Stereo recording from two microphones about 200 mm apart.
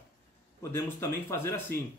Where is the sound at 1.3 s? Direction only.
10° left (ahead or behind).